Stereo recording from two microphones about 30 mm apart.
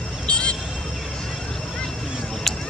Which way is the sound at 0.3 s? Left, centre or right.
Left.